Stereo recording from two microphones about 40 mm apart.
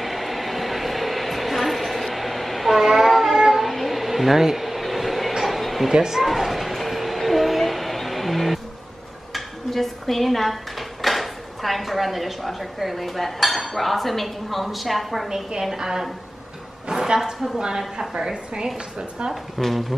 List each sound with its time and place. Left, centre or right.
0.0 s a sound: centre
5.9 s a woman's voice: centre
6.2 s a sound: centre
9.3 s speech: centre
15.2 s a woman's voice: centre
18.1 s a woman's voice: centre
19.6 s speech: centre